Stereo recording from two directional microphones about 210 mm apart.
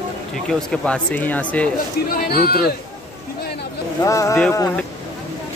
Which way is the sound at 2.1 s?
45° left (ahead or behind).